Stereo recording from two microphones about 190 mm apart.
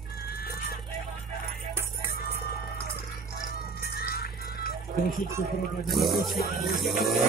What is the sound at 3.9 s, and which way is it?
Music, 50° left (ahead or behind).